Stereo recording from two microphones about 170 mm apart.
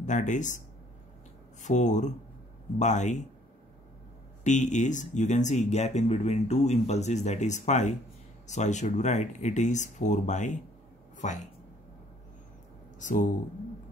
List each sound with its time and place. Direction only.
0.0 s speech: 45° left (ahead or behind)
1.6 s speech: 45° left (ahead or behind)
4.5 s speech: 45° left (ahead or behind)
13.0 s speech: 50° left (ahead or behind)